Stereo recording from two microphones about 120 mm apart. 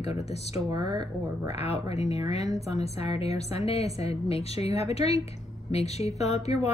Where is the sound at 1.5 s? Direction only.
60° left (ahead or behind).